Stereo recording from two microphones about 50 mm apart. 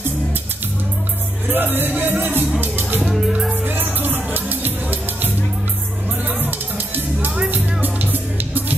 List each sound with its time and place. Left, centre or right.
1.5 s speech: right
2.6 s music: right
7.5 s music: right